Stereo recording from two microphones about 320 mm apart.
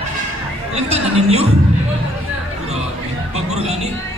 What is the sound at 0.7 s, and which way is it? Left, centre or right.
Speech, centre.